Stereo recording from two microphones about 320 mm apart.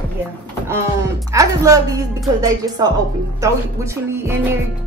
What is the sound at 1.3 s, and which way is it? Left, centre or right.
A woman's voice, centre.